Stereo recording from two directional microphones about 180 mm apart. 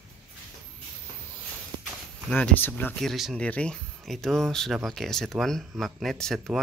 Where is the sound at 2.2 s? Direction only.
5° left (ahead or behind).